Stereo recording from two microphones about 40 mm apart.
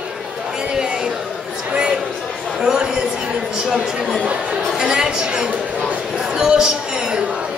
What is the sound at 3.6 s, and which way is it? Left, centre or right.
Chatter, centre.